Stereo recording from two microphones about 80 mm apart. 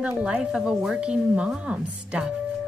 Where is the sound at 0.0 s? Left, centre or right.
Centre.